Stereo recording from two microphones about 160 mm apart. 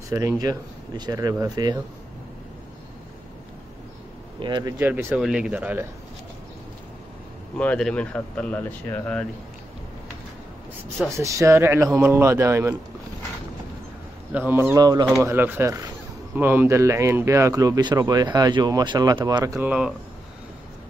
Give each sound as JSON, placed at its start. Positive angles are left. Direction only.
{"t": 0.1, "sound": "speech", "side_deg": -20}
{"t": 4.4, "sound": "speech", "side_deg": -30}
{"t": 4.7, "sound": "speech", "side_deg": -10}
{"t": 7.5, "sound": "speech", "side_deg": 5}
{"t": 11.1, "sound": "speech", "side_deg": -20}
{"t": 14.3, "sound": "speech", "side_deg": -15}
{"t": 15.2, "sound": "speech", "side_deg": -10}